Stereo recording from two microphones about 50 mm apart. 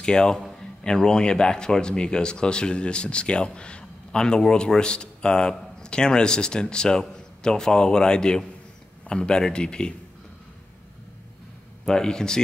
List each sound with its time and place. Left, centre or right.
0.0 s speech: centre
11.8 s speech: centre